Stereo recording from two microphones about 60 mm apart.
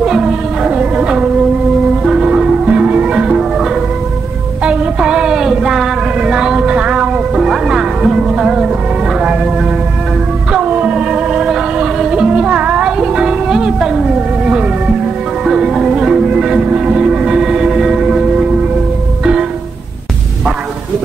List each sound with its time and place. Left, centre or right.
0.0 s music: centre
4.6 s child singing: centre
7.4 s music: centre
10.6 s music: right